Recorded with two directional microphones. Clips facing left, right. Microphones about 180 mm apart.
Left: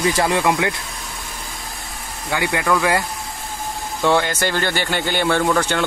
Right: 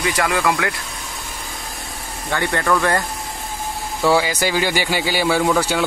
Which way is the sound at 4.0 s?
5° right (ahead or behind).